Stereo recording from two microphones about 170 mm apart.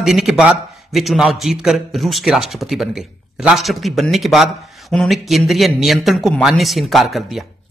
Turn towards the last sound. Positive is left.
turn(degrees=0)  # may be behind; listen again after turning